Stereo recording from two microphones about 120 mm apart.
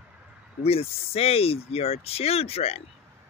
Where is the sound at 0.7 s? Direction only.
55° left (ahead or behind).